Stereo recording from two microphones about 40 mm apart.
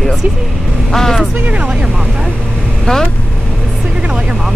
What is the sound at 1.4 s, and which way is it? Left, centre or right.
Speech, right.